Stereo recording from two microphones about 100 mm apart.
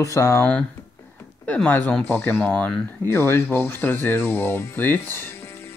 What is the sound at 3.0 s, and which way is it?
Speech, 25° left (ahead or behind).